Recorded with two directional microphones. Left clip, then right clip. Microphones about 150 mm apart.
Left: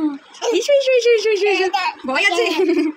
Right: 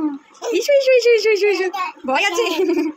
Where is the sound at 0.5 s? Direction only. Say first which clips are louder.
Right 1 dB; centre (ahead or behind).